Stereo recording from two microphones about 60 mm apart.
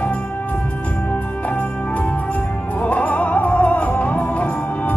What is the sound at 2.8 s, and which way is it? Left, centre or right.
Music, left.